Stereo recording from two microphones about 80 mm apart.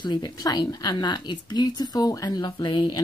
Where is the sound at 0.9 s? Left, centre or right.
Left.